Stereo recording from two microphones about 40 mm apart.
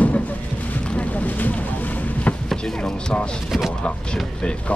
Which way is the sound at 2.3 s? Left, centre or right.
Left.